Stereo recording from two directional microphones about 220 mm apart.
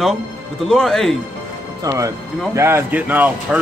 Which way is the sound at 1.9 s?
15° right (ahead or behind).